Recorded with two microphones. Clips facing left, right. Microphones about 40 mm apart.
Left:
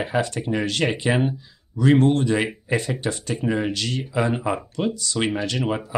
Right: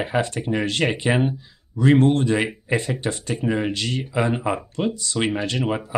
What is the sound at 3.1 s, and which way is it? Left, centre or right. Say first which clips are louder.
Speech: even; right.